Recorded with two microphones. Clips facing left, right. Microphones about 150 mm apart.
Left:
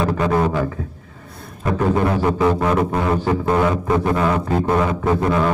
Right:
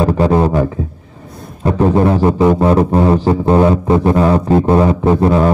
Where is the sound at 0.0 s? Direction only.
30° right (ahead or behind).